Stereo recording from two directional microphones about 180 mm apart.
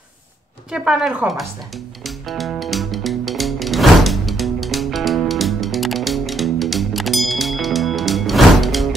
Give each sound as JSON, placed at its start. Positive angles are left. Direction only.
{"t": 0.7, "sound": "a woman's voice", "side_deg": -5}
{"t": 2.0, "sound": "music", "side_deg": 0}